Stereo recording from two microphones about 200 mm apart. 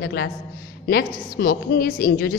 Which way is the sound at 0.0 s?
55° left (ahead or behind).